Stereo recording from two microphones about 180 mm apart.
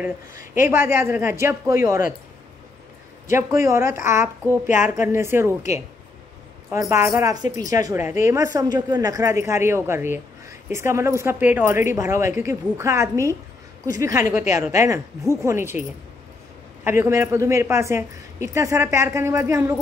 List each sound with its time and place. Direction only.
0.3 s speech: 50° left (ahead or behind)
0.7 s a woman's voice: 15° right (ahead or behind)
3.3 s a woman's voice: 15° right (ahead or behind)
4.6 s speech: 45° left (ahead or behind)
5.0 s a woman's voice: 15° right (ahead or behind)
6.7 s a woman's voice: 15° right (ahead or behind)
16.8 s a woman's voice: 15° right (ahead or behind)